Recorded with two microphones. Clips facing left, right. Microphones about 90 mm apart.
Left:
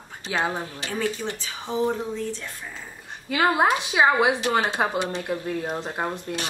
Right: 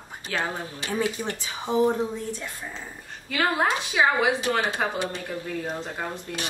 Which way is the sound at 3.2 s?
15° left (ahead or behind).